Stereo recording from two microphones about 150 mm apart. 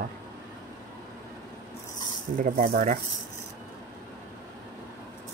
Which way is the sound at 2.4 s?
70° right (ahead or behind).